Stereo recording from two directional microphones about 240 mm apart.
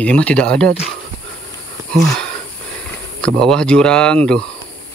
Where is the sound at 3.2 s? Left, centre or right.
Centre.